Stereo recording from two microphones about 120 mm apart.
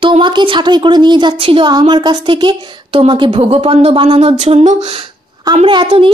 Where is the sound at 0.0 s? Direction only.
45° right (ahead or behind); by 4.9 s 70° right (ahead or behind).